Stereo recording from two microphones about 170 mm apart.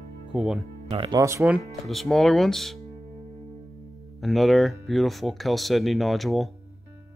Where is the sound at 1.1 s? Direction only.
15° right (ahead or behind).